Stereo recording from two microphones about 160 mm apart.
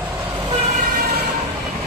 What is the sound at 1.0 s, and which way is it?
Vehicle, 80° right.